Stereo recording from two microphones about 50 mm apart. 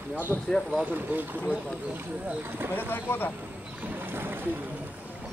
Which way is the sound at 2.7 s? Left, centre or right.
Left.